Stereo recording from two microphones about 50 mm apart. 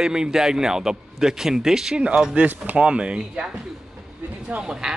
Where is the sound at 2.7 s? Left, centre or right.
Right.